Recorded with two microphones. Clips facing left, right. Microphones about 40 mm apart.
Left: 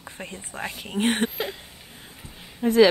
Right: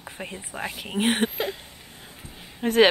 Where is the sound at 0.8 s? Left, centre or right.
Centre.